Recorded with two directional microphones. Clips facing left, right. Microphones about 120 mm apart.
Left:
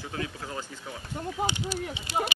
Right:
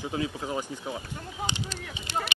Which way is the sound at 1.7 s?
10° left (ahead or behind).